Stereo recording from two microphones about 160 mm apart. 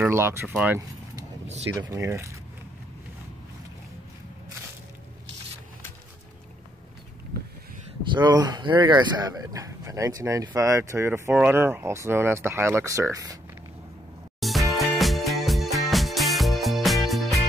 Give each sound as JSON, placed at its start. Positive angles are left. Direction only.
{"t": 0.0, "sound": "speech", "side_deg": -15}
{"t": 8.1, "sound": "speech", "side_deg": -25}
{"t": 14.4, "sound": "music", "side_deg": 0}